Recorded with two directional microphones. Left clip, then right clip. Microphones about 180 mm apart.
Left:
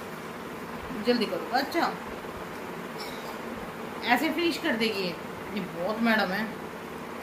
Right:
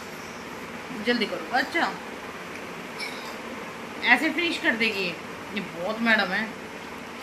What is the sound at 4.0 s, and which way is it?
A woman's voice, centre (ahead or behind).